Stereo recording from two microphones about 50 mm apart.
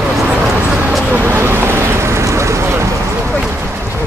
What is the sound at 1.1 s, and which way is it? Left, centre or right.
Vehicle, right.